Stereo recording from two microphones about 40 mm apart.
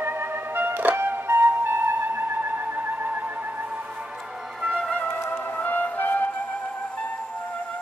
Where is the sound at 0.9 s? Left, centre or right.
Right.